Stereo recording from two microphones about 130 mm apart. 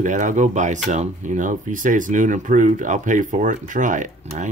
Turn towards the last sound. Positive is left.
turn(degrees=-80)